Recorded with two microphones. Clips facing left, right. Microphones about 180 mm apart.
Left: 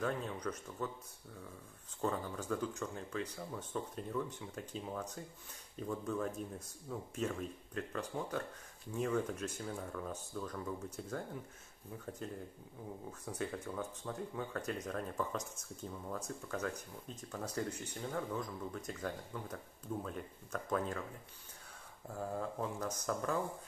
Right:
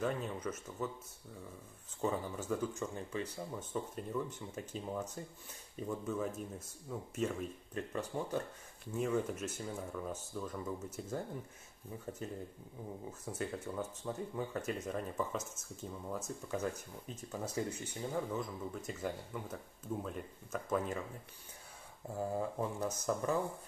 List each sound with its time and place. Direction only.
0.0 s speech: 5° right (ahead or behind)
2.0 s speech: 5° right (ahead or behind)
13.2 s speech: 5° right (ahead or behind)
22.1 s speech: 10° right (ahead or behind)